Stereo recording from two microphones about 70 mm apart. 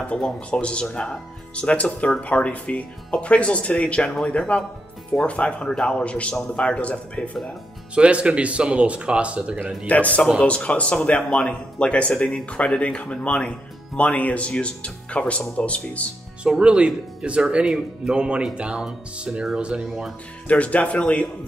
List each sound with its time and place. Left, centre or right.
0.1 s speech: centre
7.9 s speech: centre
9.8 s speech: left
16.4 s speech: centre
20.4 s speech: centre